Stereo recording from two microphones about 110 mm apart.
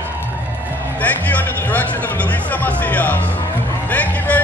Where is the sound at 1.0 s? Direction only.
15° left (ahead or behind).